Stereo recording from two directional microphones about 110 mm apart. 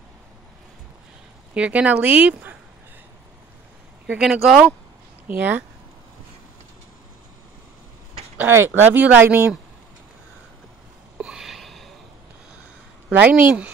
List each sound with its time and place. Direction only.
1.5 s speech: 10° right (ahead or behind)
4.1 s speech: 5° right (ahead or behind)
8.4 s speech: 20° right (ahead or behind)
11.1 s a sound: 5° right (ahead or behind)
13.1 s speech: 15° right (ahead or behind)